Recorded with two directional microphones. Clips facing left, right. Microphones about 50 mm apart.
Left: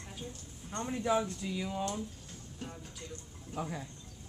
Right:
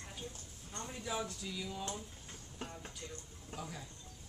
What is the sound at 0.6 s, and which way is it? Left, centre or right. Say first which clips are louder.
A man's voice: left 10 dB; left.